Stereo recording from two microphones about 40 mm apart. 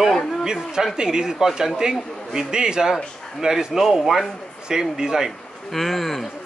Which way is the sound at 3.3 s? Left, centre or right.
Centre.